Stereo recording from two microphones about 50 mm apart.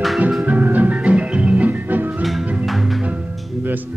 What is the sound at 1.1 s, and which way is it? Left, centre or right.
Music, right.